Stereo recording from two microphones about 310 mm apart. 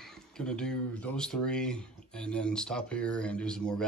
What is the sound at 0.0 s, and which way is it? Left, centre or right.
Speech, centre.